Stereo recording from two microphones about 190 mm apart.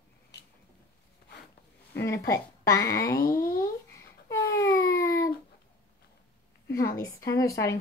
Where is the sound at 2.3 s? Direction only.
15° left (ahead or behind).